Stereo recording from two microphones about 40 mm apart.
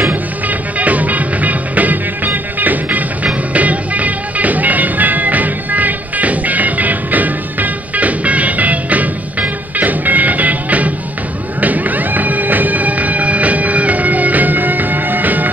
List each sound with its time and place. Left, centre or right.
0.1 s music: right